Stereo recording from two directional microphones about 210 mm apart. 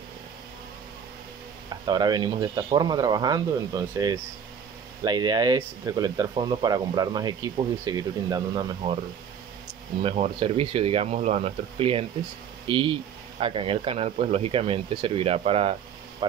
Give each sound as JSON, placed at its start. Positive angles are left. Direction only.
{"t": 1.7, "sound": "speech", "side_deg": -20}
{"t": 10.0, "sound": "speech", "side_deg": -30}